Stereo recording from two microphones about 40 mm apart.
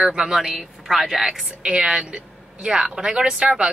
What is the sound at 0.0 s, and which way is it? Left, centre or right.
Speech, centre.